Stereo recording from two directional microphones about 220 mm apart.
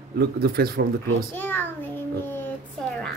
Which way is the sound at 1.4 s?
10° left (ahead or behind).